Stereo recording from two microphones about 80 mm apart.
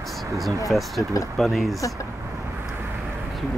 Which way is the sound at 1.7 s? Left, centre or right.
Left.